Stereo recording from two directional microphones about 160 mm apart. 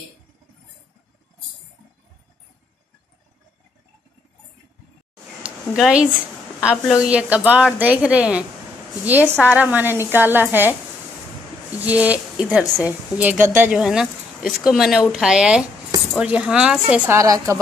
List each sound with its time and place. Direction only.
5.8 s speech: 5° right (ahead or behind)
11.8 s speech: 10° right (ahead or behind)
17.2 s a woman's voice: 20° right (ahead or behind)